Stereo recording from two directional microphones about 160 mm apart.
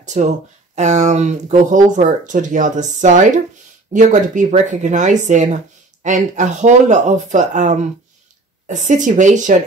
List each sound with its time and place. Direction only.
0.0 s speech: 50° right (ahead or behind)